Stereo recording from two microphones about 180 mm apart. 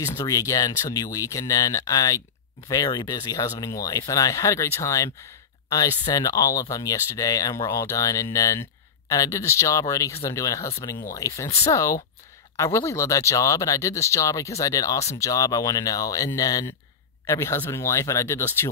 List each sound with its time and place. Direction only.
0.0 s speech: 20° left (ahead or behind)